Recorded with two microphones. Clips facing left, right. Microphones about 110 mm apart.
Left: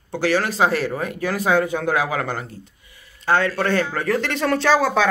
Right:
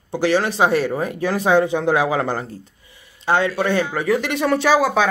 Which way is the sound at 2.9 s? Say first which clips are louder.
Right 1 dB; 20° right (ahead or behind).